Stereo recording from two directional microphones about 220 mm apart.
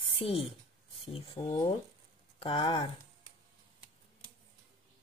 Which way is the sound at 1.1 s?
25° left (ahead or behind).